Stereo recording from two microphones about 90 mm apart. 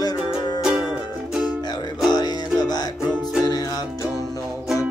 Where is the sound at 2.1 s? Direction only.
50° left (ahead or behind).